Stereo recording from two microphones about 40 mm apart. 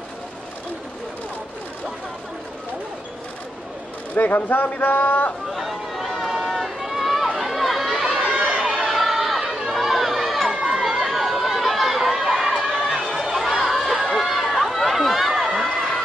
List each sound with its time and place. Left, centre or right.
4.1 s speech: left
5.5 s run: centre
7.3 s a sound: centre
8.4 s run: right
8.6 s chatter: centre
14.1 s run: centre